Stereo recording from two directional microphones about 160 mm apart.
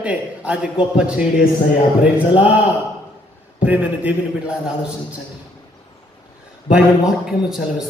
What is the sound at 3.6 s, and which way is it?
A man's voice, 10° right (ahead or behind).